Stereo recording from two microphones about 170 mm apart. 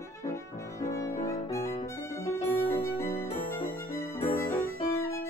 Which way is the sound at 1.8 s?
15° left (ahead or behind).